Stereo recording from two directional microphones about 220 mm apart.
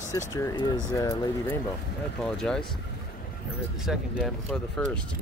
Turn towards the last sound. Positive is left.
turn(degrees=0)  # may be behind; listen again after turning